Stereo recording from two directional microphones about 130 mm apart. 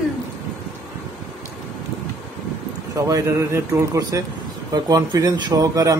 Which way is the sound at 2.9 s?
25° right (ahead or behind).